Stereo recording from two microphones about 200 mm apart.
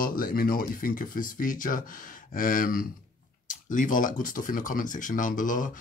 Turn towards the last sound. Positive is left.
turn(degrees=40)  # may be behind; listen again after turning